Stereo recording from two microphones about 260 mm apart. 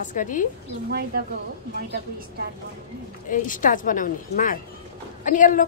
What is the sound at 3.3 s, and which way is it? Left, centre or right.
Speech, left.